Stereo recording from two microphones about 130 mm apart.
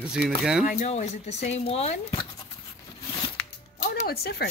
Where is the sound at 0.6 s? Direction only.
60° left (ahead or behind).